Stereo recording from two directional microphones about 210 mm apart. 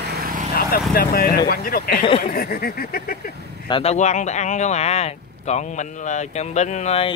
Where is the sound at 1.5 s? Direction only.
45° left (ahead or behind).